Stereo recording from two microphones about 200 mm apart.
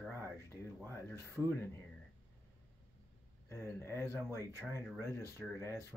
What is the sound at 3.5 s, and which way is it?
Speech, 15° left (ahead or behind).